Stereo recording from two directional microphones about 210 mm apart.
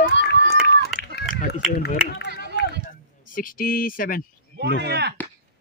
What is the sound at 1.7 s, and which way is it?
Speech, 50° left (ahead or behind).